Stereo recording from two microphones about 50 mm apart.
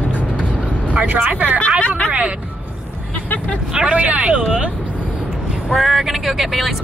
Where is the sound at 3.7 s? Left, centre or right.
Right.